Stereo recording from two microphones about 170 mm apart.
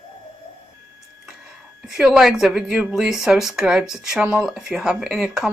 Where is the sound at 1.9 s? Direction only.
Centre (ahead or behind).